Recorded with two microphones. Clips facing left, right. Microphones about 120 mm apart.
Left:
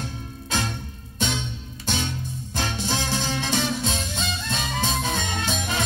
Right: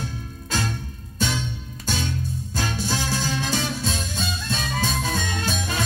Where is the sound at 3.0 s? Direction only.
20° left (ahead or behind).